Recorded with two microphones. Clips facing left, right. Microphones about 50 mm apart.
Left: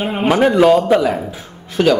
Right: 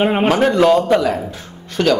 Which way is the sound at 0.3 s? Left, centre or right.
Centre.